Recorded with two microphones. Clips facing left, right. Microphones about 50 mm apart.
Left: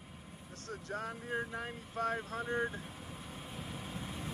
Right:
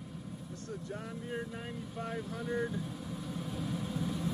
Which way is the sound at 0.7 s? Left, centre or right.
Left.